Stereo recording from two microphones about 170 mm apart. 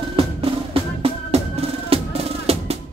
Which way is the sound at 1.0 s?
35° right (ahead or behind).